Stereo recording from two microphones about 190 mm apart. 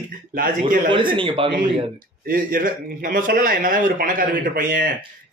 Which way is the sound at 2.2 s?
50° right (ahead or behind).